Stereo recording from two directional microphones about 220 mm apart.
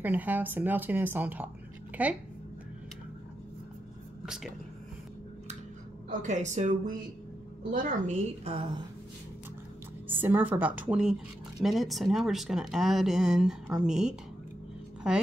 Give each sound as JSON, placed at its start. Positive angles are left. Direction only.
{"t": 0.0, "sound": "speech", "side_deg": -10}
{"t": 6.0, "sound": "a woman's voice", "side_deg": -35}
{"t": 10.0, "sound": "speech", "side_deg": -10}